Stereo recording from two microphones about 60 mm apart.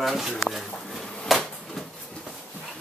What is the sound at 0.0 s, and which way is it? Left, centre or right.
Speech, centre.